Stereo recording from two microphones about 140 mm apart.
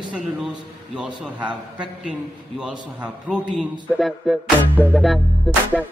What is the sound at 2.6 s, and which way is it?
A man's voice, 5° right (ahead or behind).